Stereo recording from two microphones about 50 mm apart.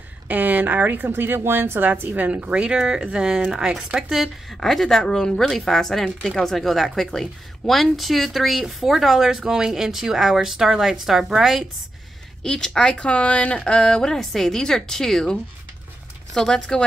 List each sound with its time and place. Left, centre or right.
0.3 s speech: right
1.9 s speech: right
2.5 s speech: centre
4.5 s a woman's voice: centre
12.4 s speech: centre
16.3 s speech: centre